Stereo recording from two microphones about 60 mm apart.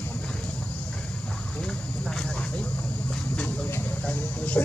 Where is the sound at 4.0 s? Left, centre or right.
Left.